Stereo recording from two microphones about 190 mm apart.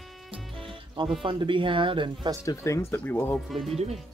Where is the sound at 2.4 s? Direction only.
15° left (ahead or behind); by 3.8 s centre (ahead or behind).